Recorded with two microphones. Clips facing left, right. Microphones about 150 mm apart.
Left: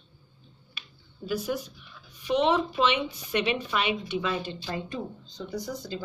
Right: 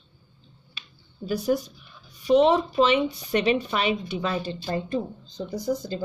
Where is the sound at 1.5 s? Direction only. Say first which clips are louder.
Right 7 dB; 40° right (ahead or behind).